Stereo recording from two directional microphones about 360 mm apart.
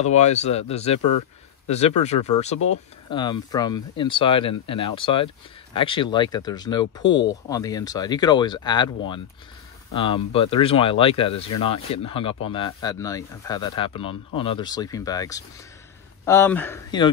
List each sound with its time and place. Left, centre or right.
0.0 s speech: centre